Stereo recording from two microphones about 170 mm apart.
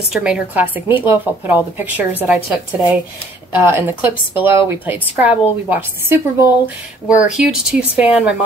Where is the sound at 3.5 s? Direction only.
15° right (ahead or behind).